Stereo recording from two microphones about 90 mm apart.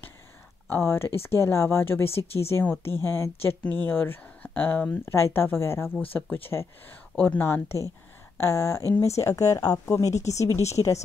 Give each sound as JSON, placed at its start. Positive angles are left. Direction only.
{"t": 0.7, "sound": "speech", "side_deg": 25}
{"t": 2.0, "sound": "speech", "side_deg": 90}
{"t": 2.8, "sound": "speech", "side_deg": 25}
{"t": 7.4, "sound": "speech", "side_deg": 25}